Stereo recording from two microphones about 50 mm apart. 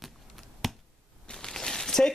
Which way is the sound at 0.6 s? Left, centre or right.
Centre.